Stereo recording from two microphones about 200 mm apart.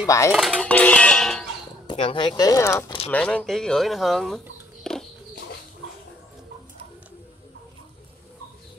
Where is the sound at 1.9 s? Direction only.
25° left (ahead or behind); by 4.4 s centre (ahead or behind).